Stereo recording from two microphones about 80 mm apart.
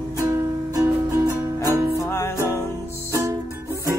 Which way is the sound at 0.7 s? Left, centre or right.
Right.